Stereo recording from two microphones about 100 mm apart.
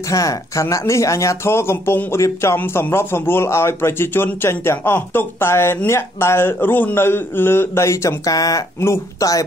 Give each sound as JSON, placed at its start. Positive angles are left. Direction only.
{"t": 0.1, "sound": "speech", "side_deg": 35}